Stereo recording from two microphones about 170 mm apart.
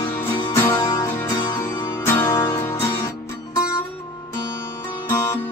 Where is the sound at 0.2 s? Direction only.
15° left (ahead or behind).